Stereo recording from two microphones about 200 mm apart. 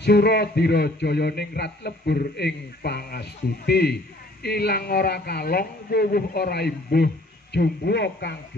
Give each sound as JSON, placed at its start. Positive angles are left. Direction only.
{"t": 0.0, "sound": "a man's voice", "side_deg": 55}